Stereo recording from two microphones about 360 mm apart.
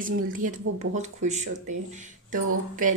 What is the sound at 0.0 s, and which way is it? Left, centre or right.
Speech, right.